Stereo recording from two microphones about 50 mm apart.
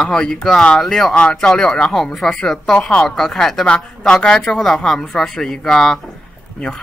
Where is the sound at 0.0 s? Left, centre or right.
Centre.